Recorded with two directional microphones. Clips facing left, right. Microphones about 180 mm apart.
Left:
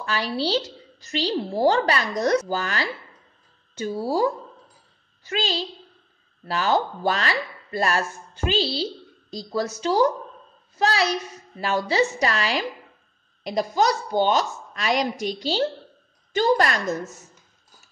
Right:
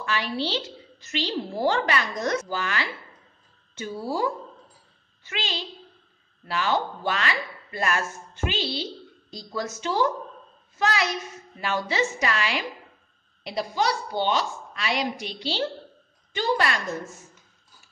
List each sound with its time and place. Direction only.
0.0 s a woman's voice: 35° left (ahead or behind)